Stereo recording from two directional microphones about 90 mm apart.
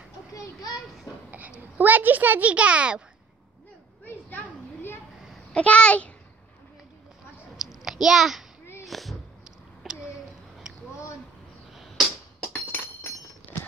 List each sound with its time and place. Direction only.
0.3 s a child's voice: 40° left (ahead or behind)
1.3 s a child's voice: 20° right (ahead or behind)
4.0 s children playing: 20° left (ahead or behind)
5.5 s a child's voice: 15° left (ahead or behind)
7.8 s a sound: 5° right (ahead or behind)
11.7 s arrow: centre (ahead or behind)
12.5 s glass: 25° left (ahead or behind)